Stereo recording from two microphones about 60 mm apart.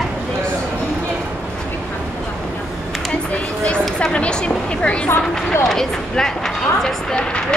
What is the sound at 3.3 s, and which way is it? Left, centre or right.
Speech, centre.